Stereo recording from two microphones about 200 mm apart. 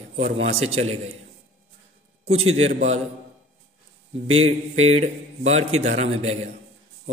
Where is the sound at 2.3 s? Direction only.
30° right (ahead or behind).